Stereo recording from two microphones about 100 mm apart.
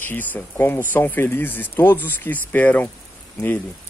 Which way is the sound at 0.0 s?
20° left (ahead or behind).